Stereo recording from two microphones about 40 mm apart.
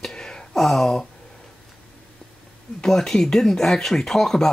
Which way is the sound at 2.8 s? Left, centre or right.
Centre.